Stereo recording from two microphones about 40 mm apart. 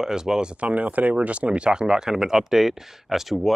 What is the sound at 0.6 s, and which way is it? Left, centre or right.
Speech, right.